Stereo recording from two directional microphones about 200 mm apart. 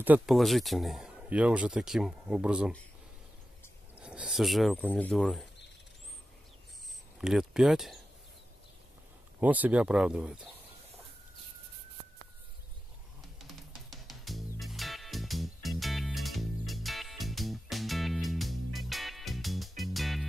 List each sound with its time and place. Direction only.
0.0 s speech: 5° right (ahead or behind)
4.0 s speech: 5° right (ahead or behind)
7.2 s speech: 5° right (ahead or behind)
9.4 s speech: 10° right (ahead or behind)
13.4 s music: centre (ahead or behind)